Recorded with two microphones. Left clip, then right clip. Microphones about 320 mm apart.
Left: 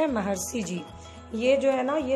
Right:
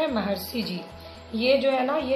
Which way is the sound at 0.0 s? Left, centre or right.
Left.